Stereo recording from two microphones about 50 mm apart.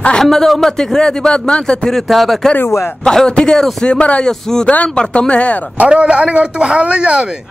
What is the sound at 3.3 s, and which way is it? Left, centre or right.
A man's voice, centre.